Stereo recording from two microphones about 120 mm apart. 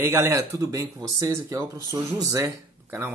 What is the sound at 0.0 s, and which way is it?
Speech, 20° right (ahead or behind).